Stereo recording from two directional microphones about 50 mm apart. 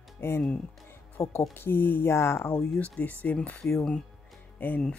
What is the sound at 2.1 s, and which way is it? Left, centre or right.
Speech, left.